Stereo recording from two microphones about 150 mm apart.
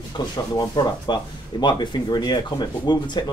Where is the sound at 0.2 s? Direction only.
25° left (ahead or behind).